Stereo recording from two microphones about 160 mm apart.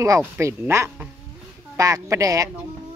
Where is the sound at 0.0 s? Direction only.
20° right (ahead or behind).